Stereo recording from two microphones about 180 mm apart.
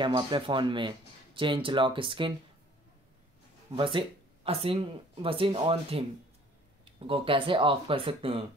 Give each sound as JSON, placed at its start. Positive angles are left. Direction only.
{"t": 0.0, "sound": "speech", "side_deg": -25}
{"t": 3.7, "sound": "speech", "side_deg": -30}